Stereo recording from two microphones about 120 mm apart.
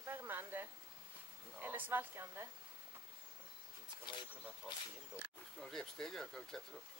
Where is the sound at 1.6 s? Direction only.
15° right (ahead or behind).